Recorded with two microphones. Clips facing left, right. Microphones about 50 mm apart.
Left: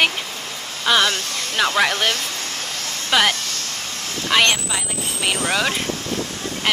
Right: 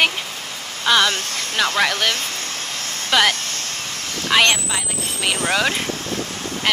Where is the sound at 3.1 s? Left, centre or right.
Centre.